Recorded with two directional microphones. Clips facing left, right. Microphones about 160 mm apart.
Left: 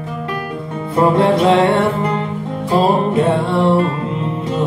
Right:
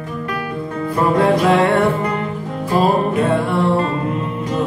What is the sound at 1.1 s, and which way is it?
Music, 25° left (ahead or behind).